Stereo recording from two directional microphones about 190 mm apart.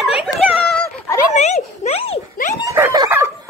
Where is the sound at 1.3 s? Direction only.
35° left (ahead or behind).